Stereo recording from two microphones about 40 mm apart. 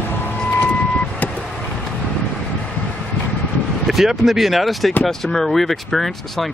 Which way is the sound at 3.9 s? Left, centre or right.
Centre.